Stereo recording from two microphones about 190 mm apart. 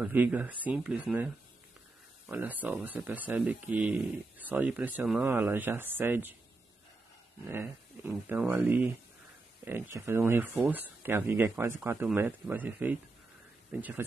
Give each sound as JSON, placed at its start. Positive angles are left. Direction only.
{"t": 0.0, "sound": "speech", "side_deg": -10}
{"t": 7.4, "sound": "speech", "side_deg": -10}